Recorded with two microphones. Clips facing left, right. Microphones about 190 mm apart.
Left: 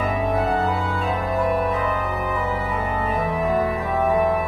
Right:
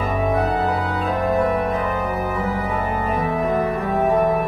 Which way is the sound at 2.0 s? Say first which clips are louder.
Right 2 dB; 45° right (ahead or behind).